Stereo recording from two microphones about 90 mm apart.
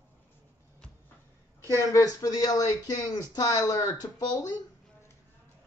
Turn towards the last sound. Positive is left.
turn(degrees=45)  # may be behind; listen again after turning